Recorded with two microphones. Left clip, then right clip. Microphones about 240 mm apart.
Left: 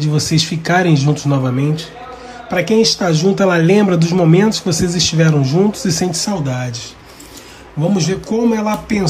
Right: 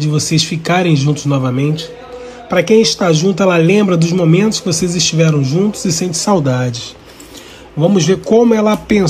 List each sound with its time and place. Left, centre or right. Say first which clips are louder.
0.0 s speech: right 1 dB; centre
2.5 s speech: right 5 dB; centre
2.8 s speech: right 2 dB; centre
7.9 s speech: right 8 dB; centre
8.5 s speech: right 5 dB; right